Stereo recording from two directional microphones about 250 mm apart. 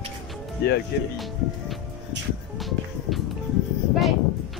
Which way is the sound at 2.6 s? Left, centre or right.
Centre.